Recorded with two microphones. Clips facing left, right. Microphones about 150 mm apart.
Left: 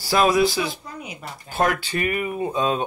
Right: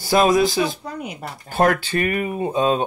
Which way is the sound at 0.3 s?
45° right (ahead or behind).